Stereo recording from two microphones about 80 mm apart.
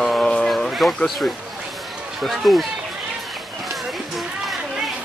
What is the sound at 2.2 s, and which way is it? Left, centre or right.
Speech, centre.